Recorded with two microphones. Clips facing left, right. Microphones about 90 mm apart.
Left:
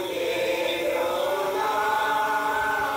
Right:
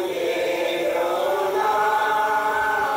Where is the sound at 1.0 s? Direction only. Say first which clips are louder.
Right 4 dB; 20° right (ahead or behind).